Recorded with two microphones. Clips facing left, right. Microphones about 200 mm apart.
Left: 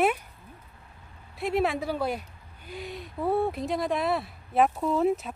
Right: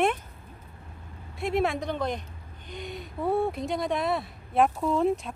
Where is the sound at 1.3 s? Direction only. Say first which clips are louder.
Even; centre (ahead or behind).